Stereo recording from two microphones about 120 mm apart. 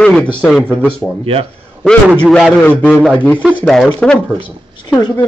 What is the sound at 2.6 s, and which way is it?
A man's voice, 10° left (ahead or behind).